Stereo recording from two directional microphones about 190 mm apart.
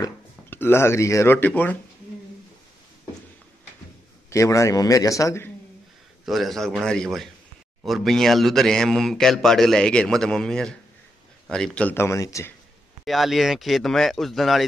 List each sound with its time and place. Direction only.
0.0 s speech: 10° left (ahead or behind)
4.3 s speech: 15° left (ahead or behind)
6.2 s a man's voice: centre (ahead or behind); by 12.5 s 15° left (ahead or behind)
13.0 s a man's voice: centre (ahead or behind)